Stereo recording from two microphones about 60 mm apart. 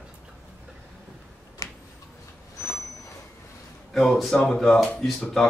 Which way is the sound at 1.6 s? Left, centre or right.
Left.